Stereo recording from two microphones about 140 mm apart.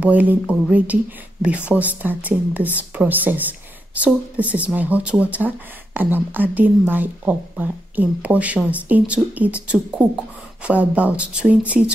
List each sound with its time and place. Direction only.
0.0 s speech: 10° right (ahead or behind)